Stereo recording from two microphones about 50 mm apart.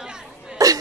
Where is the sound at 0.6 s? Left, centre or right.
Right.